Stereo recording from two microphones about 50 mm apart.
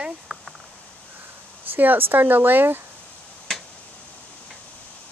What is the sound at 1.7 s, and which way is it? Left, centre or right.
Speech, right.